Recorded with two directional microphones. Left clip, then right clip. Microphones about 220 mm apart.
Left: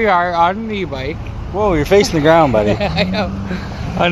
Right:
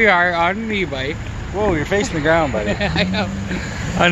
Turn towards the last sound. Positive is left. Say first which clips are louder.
# even
turn(degrees=-10)  # may be behind; listen again after turning